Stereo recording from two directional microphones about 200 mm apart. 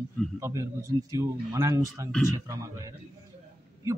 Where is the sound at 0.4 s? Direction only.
15° right (ahead or behind).